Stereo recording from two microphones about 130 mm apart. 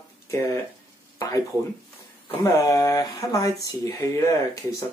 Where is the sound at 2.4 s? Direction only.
25° left (ahead or behind).